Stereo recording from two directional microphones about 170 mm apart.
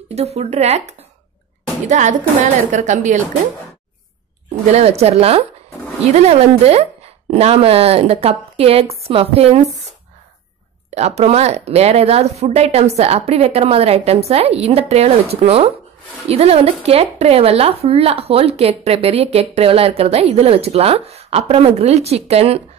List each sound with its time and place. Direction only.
0.1 s a woman's voice: 40° right (ahead or behind)
4.6 s speech: 40° right (ahead or behind)
11.0 s speech: 40° right (ahead or behind)